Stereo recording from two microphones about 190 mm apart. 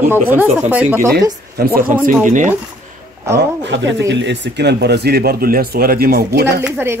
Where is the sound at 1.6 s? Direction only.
55° right (ahead or behind).